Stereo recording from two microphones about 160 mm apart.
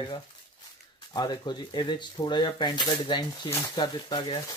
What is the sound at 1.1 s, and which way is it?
Speech, 25° left (ahead or behind).